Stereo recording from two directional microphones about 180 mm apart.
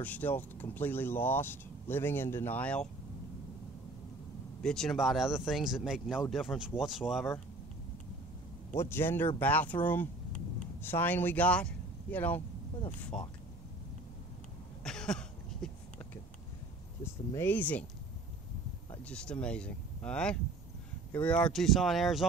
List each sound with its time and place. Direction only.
0.0 s speech: 10° left (ahead or behind)
4.6 s speech: centre (ahead or behind)
8.7 s speech: 15° left (ahead or behind)
10.8 s speech: 10° left (ahead or behind)
14.8 s cough: 5° left (ahead or behind)
17.0 s speech: 15° left (ahead or behind)
19.0 s speech: 5° left (ahead or behind)